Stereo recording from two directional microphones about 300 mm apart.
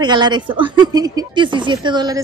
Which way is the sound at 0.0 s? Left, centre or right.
Centre.